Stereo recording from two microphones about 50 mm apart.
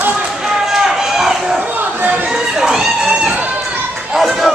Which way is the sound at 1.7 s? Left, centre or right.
Right.